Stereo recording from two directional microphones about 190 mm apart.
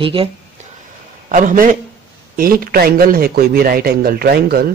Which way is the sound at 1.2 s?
45° right (ahead or behind).